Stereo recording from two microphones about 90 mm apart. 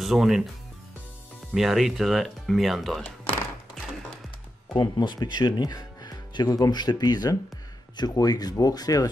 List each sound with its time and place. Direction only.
0.0 s speech: centre (ahead or behind)
1.5 s speech: 5° right (ahead or behind)
4.7 s speech: 55° left (ahead or behind)